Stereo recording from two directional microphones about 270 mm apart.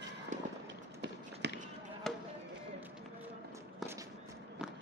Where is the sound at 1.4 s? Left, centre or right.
Right.